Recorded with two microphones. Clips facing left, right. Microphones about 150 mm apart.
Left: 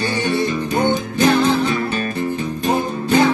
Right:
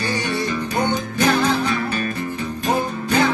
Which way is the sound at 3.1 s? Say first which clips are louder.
Left 4 dB; 25° left (ahead or behind).